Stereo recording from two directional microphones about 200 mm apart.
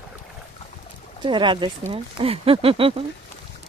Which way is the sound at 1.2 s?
25° right (ahead or behind).